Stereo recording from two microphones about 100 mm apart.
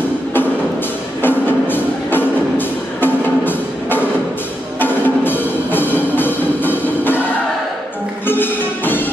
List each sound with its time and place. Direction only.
1.2 s music: 20° left (ahead or behind)
8.3 s music: 20° left (ahead or behind)